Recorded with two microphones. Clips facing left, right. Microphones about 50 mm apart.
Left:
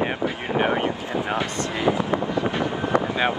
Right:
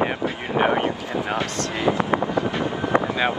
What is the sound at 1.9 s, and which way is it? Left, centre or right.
Vehicle, right.